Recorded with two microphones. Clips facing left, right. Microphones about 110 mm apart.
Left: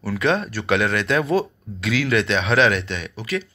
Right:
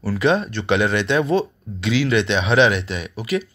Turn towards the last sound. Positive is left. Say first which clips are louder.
# right 3 dB
turn(degrees=-10)  # may be behind; listen again after turning